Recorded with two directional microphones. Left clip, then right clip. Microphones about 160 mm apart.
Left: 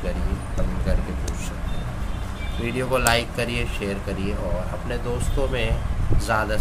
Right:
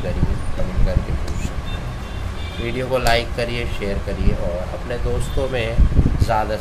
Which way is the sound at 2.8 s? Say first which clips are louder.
Right 2 dB; 35° left (ahead or behind).